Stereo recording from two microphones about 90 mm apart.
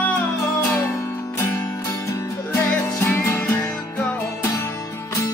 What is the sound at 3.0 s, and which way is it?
Music, 25° left (ahead or behind).